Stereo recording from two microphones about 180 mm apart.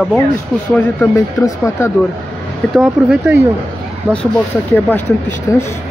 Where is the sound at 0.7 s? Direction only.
15° left (ahead or behind).